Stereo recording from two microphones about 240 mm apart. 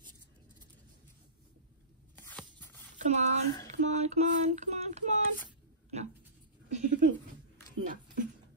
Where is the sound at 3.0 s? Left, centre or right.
Right.